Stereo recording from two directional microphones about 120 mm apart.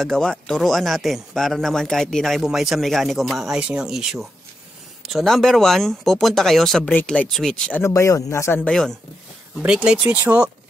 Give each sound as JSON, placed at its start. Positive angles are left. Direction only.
{"t": 0.0, "sound": "speech", "side_deg": 5}
{"t": 6.9, "sound": "speech", "side_deg": 10}
{"t": 7.8, "sound": "speech", "side_deg": 25}
{"t": 8.6, "sound": "speech", "side_deg": 5}
{"t": 9.7, "sound": "speech", "side_deg": -5}